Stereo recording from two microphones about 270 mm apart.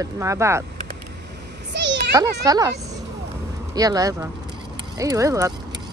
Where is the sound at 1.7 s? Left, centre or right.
Right.